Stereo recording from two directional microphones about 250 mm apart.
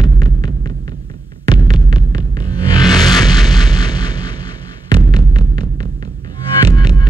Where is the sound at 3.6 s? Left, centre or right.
Centre.